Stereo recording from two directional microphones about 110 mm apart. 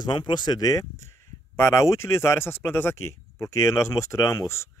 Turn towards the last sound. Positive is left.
turn(degrees=25)  # may be behind; listen again after turning